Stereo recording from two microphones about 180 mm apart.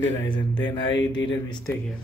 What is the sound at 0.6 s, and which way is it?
Mantra, 25° left (ahead or behind).